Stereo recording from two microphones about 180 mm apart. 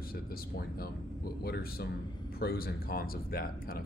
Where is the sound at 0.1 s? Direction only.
55° left (ahead or behind).